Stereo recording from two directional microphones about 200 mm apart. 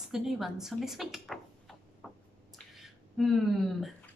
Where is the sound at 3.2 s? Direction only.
Centre (ahead or behind).